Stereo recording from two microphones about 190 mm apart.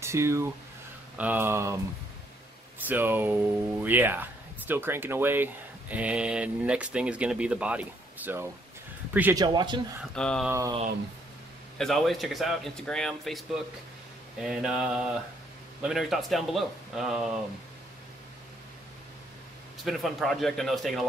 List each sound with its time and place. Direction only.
0.0 s speech: 15° right (ahead or behind)
2.9 s speech: 10° right (ahead or behind)
9.4 s a man's voice: 25° right (ahead or behind)
10.1 s speech: 5° left (ahead or behind)
11.8 s speech: centre (ahead or behind)
14.4 s speech: centre (ahead or behind)
19.8 s speech: centre (ahead or behind)